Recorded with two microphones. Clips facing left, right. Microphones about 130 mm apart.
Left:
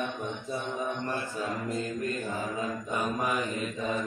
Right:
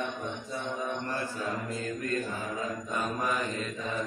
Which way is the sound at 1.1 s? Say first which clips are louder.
Left 1 dB; 15° left (ahead or behind).